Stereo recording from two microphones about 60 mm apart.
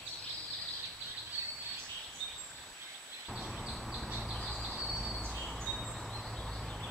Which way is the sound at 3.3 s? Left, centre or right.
Centre.